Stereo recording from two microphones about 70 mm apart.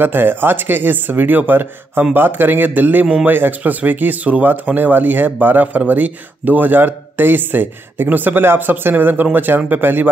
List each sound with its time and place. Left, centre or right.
0.0 s speech: right